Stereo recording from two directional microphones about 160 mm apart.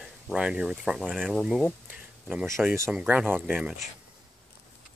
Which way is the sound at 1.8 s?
10° right (ahead or behind).